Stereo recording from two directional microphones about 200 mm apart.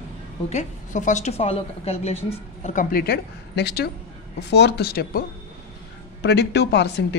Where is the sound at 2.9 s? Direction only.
50° left (ahead or behind).